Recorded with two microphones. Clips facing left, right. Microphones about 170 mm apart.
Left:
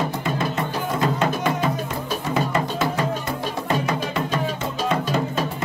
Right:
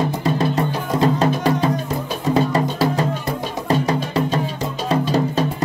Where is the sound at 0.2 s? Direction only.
35° right (ahead or behind).